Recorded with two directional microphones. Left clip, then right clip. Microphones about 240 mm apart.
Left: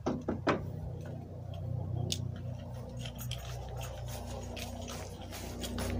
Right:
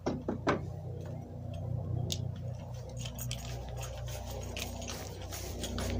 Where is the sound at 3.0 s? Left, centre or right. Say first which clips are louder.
Right 2 dB; centre.